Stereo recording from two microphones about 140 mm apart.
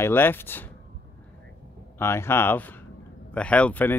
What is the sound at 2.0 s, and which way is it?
Speech, 20° left (ahead or behind).